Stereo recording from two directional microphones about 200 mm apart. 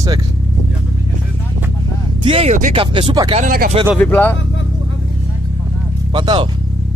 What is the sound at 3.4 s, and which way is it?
Speech, 45° right (ahead or behind).